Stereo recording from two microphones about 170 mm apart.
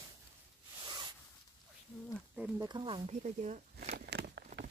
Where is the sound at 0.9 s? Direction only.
25° right (ahead or behind).